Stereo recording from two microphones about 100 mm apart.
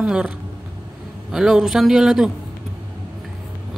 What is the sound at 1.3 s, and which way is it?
A man's voice, 5° right (ahead or behind).